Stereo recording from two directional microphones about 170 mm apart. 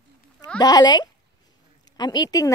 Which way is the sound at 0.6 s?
25° left (ahead or behind).